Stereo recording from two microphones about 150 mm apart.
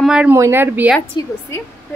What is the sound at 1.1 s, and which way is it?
Speech, 30° left (ahead or behind).